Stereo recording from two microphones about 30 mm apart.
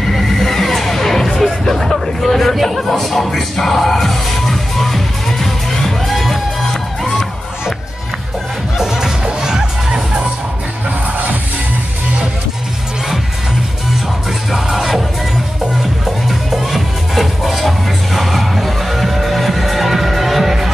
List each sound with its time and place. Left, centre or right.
0.1 s music: centre
8.7 s music: centre
14.5 s music: centre
16.3 s music: centre